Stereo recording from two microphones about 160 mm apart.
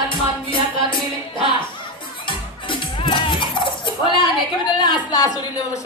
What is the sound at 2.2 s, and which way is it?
Music, 30° left (ahead or behind).